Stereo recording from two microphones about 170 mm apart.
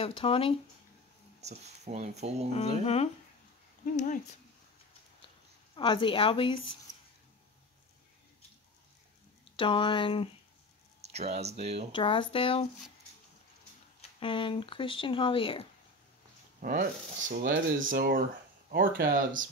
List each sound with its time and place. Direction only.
0.0 s speech: 35° left (ahead or behind)
1.4 s speech: 40° right (ahead or behind)
2.8 s speech: 35° left (ahead or behind)
3.8 s speech: 50° left (ahead or behind)
5.8 s a woman's voice: 30° left (ahead or behind)
9.4 s speech: 30° left (ahead or behind)
11.1 s speech: 40° right (ahead or behind)
11.9 s speech: 30° left (ahead or behind)
14.2 s speech: 30° left (ahead or behind)
16.6 s speech: 55° right (ahead or behind)